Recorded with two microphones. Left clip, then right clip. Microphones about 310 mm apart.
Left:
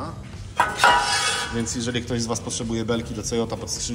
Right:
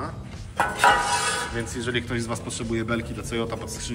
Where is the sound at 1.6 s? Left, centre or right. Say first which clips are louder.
Left 1 dB; centre.